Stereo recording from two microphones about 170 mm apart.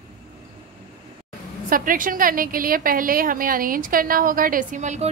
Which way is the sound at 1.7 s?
55° right (ahead or behind).